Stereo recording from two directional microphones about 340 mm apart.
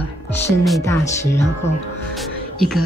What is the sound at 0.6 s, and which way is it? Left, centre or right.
Speech, centre.